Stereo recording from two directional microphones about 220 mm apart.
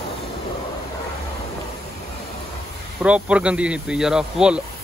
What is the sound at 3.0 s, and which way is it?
Speech, 5° right (ahead or behind).